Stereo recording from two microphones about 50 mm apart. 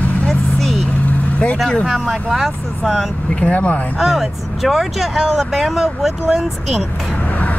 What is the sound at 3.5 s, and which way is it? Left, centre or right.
Speech, left.